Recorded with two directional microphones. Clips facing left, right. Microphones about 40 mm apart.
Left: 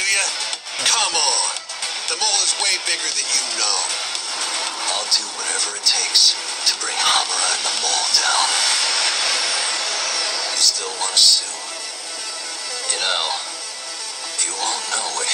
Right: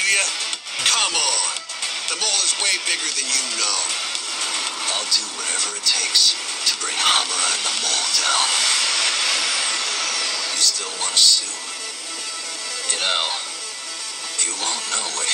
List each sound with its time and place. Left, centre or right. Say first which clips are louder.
0.0 s music: right 1 dB; right
2.0 s speech: left 2 dB; right
13.1 s speech: left 1 dB; centre
14.4 s speech: left 2 dB; right